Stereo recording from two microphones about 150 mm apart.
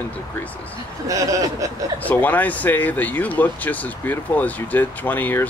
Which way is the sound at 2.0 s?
10° left (ahead or behind).